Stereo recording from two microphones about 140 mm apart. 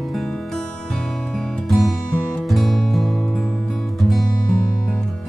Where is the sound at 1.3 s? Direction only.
5° left (ahead or behind).